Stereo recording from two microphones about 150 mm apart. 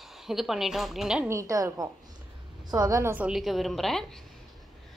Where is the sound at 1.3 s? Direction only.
20° right (ahead or behind); by 4.0 s centre (ahead or behind).